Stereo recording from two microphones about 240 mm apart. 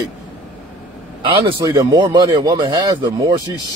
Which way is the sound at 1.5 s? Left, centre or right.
Centre.